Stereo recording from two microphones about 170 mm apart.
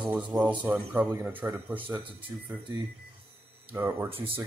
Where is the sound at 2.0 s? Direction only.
30° right (ahead or behind).